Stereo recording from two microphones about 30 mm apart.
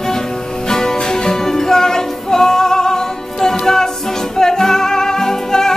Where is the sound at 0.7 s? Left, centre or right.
Centre.